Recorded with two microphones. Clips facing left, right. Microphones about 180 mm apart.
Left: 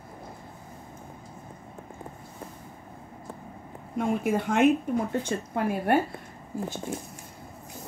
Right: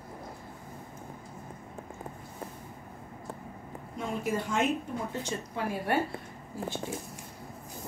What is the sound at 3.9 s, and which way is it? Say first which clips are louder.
A woman's voice: left 6 dB; 60° left (ahead or behind).